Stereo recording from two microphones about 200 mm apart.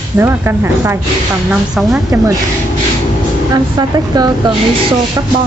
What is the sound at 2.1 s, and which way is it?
Speech, 10° right (ahead or behind).